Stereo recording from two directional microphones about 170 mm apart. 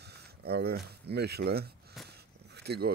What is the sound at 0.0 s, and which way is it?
Speech, 70° right (ahead or behind).